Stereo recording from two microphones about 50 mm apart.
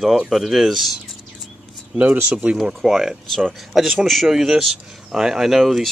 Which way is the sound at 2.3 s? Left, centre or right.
Right.